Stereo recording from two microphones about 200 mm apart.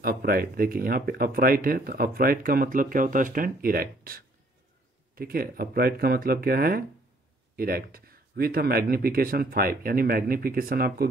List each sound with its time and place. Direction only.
0.0 s speech: 50° right (ahead or behind)